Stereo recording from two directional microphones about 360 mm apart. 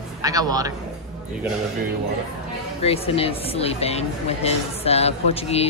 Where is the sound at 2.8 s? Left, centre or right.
Centre.